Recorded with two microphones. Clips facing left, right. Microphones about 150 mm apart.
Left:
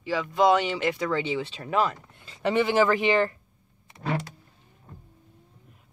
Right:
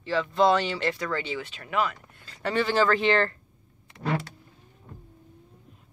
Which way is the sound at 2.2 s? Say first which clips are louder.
Left 3 dB; 20° left (ahead or behind).